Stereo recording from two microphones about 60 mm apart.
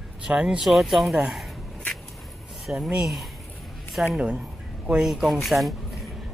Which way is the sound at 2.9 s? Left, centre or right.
Centre.